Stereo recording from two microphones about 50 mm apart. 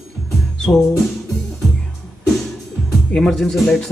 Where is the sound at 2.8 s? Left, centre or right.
Centre.